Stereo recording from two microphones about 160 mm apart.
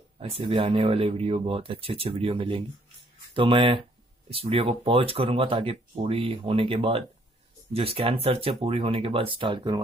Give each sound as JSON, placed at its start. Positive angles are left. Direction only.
{"t": 0.2, "sound": "speech", "side_deg": -35}